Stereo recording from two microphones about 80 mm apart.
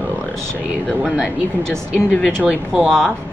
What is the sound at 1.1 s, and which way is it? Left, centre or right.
Speech, centre.